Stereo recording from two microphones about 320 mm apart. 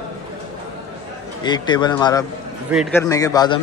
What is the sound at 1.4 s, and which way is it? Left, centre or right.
Speech, centre.